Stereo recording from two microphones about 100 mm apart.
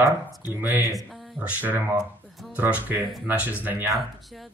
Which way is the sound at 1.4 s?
20° right (ahead or behind).